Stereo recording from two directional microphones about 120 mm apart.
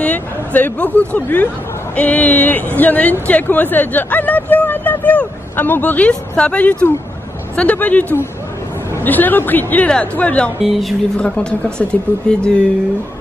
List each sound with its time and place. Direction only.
0.0 s speech: 15° left (ahead or behind)
10.6 s speech: centre (ahead or behind)